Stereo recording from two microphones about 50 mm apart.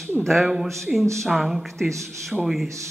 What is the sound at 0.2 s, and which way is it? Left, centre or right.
Speech, centre.